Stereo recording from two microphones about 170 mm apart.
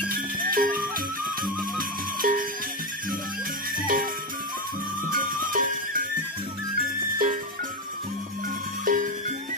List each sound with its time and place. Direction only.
0.0 s music: 55° right (ahead or behind)
3.7 s music: 55° right (ahead or behind)
5.1 s music: 55° right (ahead or behind)
8.8 s music: 50° right (ahead or behind)